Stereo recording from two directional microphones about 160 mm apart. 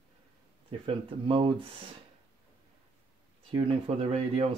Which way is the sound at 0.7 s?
35° right (ahead or behind).